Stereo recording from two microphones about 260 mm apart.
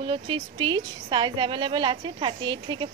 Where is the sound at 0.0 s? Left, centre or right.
Centre.